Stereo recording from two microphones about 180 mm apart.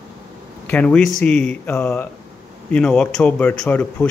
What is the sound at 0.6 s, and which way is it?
A man's voice, 5° left (ahead or behind).